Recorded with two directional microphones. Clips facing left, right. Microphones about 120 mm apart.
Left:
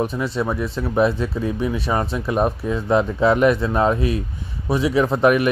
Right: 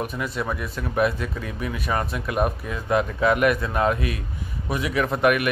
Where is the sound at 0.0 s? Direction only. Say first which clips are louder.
Left 5 dB; 30° left (ahead or behind).